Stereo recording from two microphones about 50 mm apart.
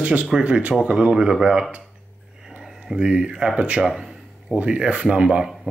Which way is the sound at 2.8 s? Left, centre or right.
Centre.